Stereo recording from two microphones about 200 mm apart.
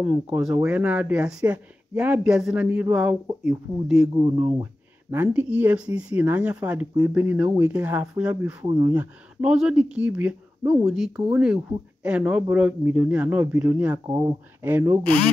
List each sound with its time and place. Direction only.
0.0 s speech: centre (ahead or behind)
5.1 s speech: 10° right (ahead or behind)
8.6 s speech: 15° right (ahead or behind)
14.0 s speech: 20° right (ahead or behind)
14.6 s speech: 10° right (ahead or behind)